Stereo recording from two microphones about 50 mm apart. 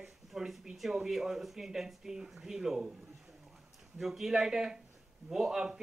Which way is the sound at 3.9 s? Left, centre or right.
Centre.